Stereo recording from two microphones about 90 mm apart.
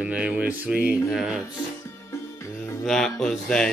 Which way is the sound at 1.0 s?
5° right (ahead or behind).